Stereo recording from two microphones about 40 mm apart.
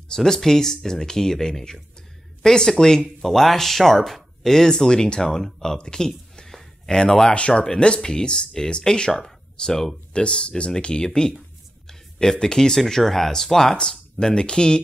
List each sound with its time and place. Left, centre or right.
0.1 s speech: centre
3.3 s speech: centre
7.3 s speech: left; by 9.9 s centre
10.1 s speech: left
14.2 s speech: left